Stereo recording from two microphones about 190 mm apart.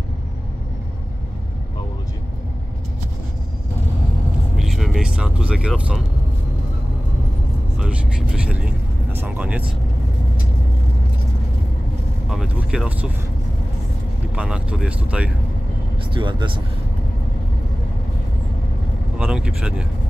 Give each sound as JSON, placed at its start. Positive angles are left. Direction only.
{"t": 4.6, "sound": "vehicle", "side_deg": 0}
{"t": 7.8, "sound": "vehicle", "side_deg": -5}
{"t": 12.3, "sound": "speech", "side_deg": -5}
{"t": 14.3, "sound": "speech", "side_deg": -5}
{"t": 16.1, "sound": "speech", "side_deg": -25}
{"t": 19.1, "sound": "speech", "side_deg": -5}